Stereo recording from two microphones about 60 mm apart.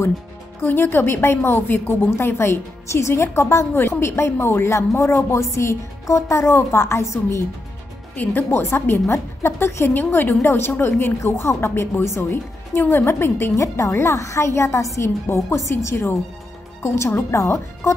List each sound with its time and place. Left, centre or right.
0.6 s a woman's voice: left
8.2 s a woman's voice: left
9.9 s a woman's voice: left
13.6 s a woman's voice: left